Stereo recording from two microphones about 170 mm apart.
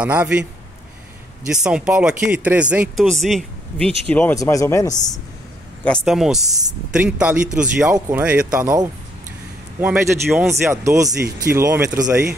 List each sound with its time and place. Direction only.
0.0 s speech: 10° right (ahead or behind)
1.5 s speech: 5° right (ahead or behind); by 5.2 s 20° left (ahead or behind)
5.9 s speech: centre (ahead or behind)
9.8 s speech: 10° right (ahead or behind)